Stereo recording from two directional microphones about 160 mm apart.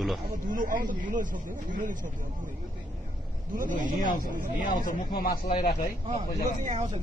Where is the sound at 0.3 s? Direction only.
55° right (ahead or behind).